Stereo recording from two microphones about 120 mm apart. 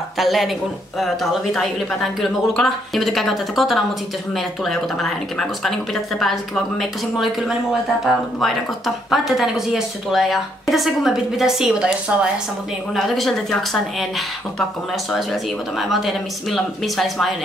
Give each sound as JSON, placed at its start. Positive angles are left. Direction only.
{"t": 0.2, "sound": "speech", "side_deg": 0}
{"t": 15.9, "sound": "speech", "side_deg": 0}